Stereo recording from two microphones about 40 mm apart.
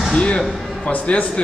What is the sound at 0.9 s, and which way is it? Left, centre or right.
Speech, left.